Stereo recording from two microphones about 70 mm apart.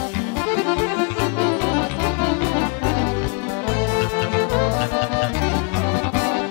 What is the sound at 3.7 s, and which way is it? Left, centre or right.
Music, left.